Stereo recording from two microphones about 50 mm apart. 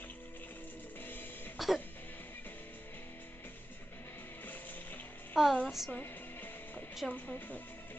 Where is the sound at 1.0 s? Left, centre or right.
Left.